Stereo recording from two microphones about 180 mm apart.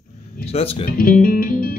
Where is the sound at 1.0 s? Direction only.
50° left (ahead or behind).